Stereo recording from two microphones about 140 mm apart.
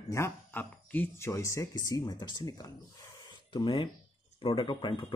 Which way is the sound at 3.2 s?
35° left (ahead or behind).